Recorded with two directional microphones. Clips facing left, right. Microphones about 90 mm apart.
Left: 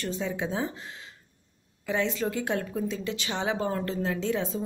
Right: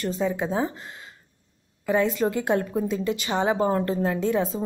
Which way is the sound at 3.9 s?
45° right (ahead or behind).